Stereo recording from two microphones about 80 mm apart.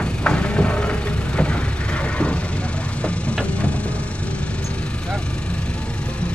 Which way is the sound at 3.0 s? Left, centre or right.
Centre.